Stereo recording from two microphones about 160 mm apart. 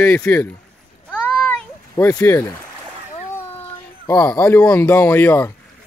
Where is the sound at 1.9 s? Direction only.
20° left (ahead or behind).